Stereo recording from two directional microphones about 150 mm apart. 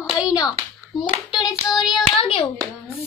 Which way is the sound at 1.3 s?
Centre (ahead or behind).